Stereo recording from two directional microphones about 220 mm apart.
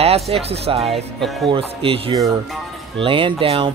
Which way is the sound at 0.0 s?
25° right (ahead or behind).